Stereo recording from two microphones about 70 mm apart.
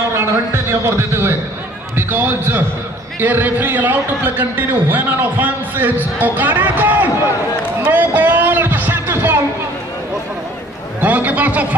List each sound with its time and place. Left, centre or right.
0.1 s a man's voice: right
7.8 s music: right
11.0 s a man's voice: right